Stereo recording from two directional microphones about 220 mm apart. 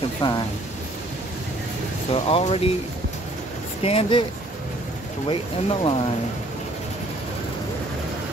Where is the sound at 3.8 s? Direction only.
25° left (ahead or behind).